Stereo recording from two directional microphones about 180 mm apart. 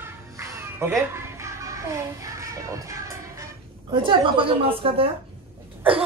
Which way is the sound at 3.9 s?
25° right (ahead or behind).